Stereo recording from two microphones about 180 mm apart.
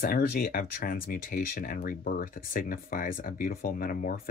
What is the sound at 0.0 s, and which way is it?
Speech, 55° left (ahead or behind).